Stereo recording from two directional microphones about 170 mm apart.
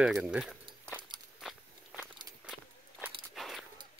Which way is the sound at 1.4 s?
Centre (ahead or behind).